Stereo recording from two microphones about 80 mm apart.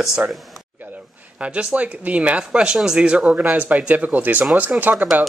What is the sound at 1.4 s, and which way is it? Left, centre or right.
Speech, centre.